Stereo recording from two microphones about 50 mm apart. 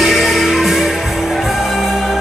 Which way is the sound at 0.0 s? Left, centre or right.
Centre.